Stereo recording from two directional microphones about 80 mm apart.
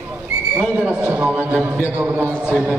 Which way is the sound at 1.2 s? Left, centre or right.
Centre.